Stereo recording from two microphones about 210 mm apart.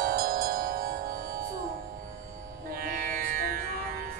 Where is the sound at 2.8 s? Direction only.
45° right (ahead or behind).